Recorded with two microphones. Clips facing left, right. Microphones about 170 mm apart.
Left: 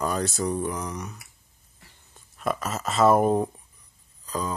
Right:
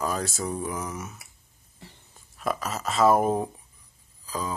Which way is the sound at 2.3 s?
Centre (ahead or behind).